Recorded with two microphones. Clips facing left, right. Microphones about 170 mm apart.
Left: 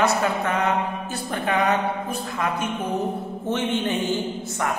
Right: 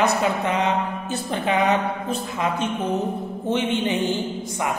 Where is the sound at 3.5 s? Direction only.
15° right (ahead or behind).